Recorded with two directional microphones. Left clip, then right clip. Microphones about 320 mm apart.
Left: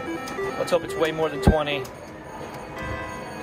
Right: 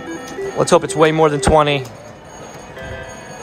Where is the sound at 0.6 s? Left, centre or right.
Centre.